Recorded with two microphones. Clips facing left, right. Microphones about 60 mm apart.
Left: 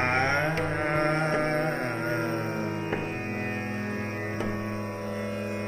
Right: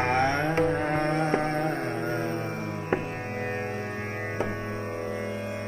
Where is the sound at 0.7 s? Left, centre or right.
Left.